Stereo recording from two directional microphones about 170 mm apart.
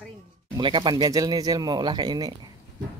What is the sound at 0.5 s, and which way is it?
Speech, 25° right (ahead or behind).